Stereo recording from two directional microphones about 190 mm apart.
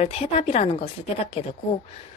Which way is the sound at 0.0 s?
35° left (ahead or behind).